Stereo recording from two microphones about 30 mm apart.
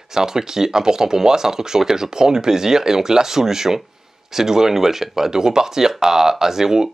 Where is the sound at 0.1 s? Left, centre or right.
Centre.